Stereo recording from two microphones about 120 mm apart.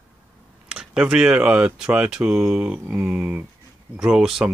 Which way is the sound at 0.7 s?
10° right (ahead or behind).